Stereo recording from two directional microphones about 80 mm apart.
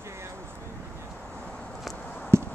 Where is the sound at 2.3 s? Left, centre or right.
Right.